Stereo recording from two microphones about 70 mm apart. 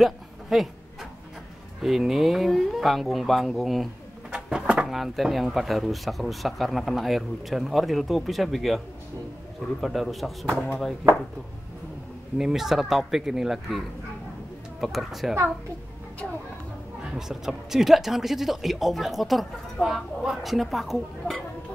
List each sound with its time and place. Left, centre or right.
0.0 s a sound: centre
1.8 s speech: centre
12.4 s speech: centre
17.1 s speech: centre